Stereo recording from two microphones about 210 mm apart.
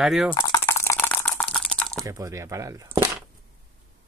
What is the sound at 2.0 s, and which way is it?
Speech, 15° right (ahead or behind).